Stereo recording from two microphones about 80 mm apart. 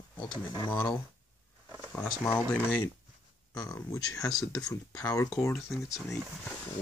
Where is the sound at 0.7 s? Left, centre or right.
Left.